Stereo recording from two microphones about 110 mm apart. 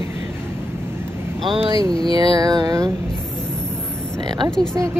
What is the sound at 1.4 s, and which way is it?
Speech, 55° right (ahead or behind).